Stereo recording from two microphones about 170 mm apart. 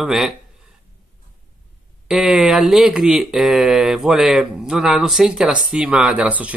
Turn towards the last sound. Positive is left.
turn(degrees=-10)  # may be behind; listen again after turning